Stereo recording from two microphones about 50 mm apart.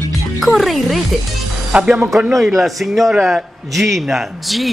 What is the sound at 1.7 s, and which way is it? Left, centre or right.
Speech, right.